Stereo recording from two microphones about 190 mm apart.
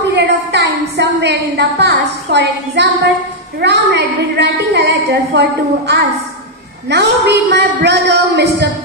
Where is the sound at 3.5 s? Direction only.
65° right (ahead or behind).